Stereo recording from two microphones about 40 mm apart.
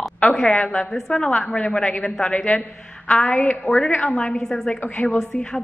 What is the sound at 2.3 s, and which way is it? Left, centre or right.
Speech, left.